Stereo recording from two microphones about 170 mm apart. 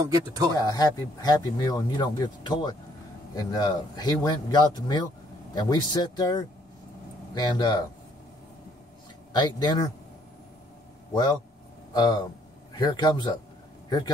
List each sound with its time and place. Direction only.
0.0 s speech: 20° right (ahead or behind)
0.6 s speech: 20° left (ahead or behind)
9.3 s speech: 25° left (ahead or behind)
11.9 s a man's voice: 25° left (ahead or behind)